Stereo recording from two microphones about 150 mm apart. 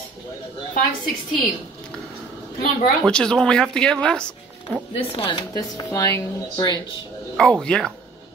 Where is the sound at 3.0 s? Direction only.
5° left (ahead or behind).